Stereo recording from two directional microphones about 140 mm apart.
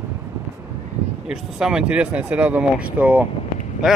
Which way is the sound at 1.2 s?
5° right (ahead or behind).